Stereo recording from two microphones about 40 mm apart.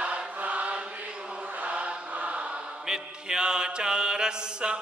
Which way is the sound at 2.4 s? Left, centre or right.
Centre.